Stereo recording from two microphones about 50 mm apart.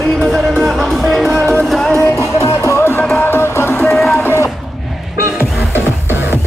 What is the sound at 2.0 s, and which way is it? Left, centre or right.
Music, left.